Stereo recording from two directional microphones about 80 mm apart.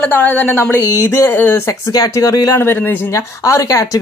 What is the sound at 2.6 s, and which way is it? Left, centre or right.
Speech, left.